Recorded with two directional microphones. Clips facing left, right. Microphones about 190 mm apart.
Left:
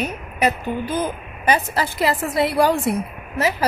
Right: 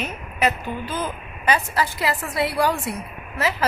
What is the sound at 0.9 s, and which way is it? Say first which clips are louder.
A woman's voice: left 4 dB; 15° left (ahead or behind).